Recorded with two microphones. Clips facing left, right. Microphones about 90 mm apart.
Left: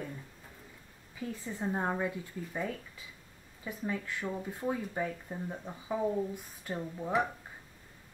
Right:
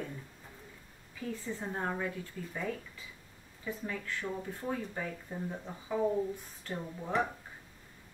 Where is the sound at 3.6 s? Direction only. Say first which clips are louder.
Left 2 dB; 15° left (ahead or behind).